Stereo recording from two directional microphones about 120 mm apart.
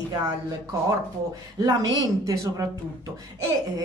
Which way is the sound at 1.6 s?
30° right (ahead or behind).